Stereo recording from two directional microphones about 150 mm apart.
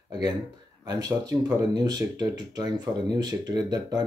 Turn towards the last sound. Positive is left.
turn(degrees=-25)  # may be behind; listen again after turning